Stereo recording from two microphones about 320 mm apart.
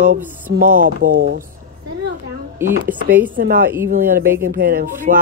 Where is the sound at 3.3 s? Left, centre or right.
Right.